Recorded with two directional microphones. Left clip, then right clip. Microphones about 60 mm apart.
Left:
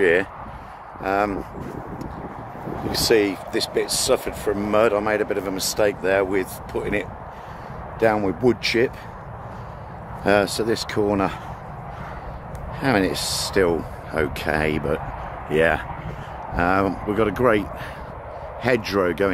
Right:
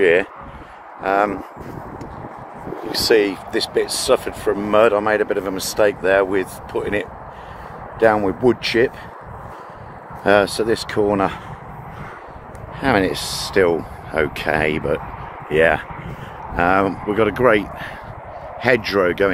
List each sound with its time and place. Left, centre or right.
1.0 s speech: centre
2.9 s speech: left
3.5 s speech: centre
8.0 s speech: centre
10.2 s speech: centre
10.6 s speech: centre
12.8 s speech: centre
15.5 s speech: left
16.5 s speech: centre